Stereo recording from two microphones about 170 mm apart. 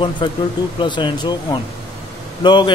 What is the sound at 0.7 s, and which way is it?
A man's voice, 30° left (ahead or behind).